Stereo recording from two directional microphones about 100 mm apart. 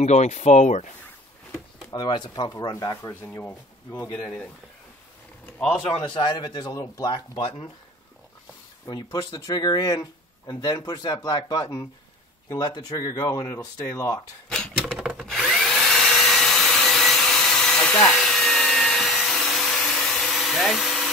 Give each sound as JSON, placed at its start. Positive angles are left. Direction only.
{"t": 0.5, "sound": "speech", "side_deg": 90}
{"t": 1.9, "sound": "speech", "side_deg": 50}
{"t": 5.9, "sound": "speech", "side_deg": 55}
{"t": 7.1, "sound": "speech", "side_deg": 55}
{"t": 8.8, "sound": "speech", "side_deg": 45}
{"t": 14.5, "sound": "a sound", "side_deg": 10}
{"t": 14.9, "sound": "wood", "side_deg": -10}
{"t": 15.2, "sound": "tools", "side_deg": 0}
{"t": 18.1, "sound": "vacuum cleaner", "side_deg": 5}